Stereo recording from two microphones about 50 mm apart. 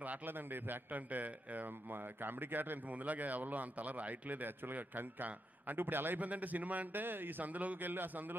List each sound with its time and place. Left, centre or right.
0.0 s a man's voice: right